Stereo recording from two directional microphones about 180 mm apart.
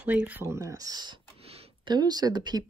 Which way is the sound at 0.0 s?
10° right (ahead or behind).